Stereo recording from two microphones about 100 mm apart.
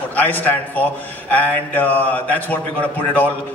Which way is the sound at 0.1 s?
15° left (ahead or behind).